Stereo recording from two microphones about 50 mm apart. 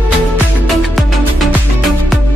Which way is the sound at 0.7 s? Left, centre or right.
Centre.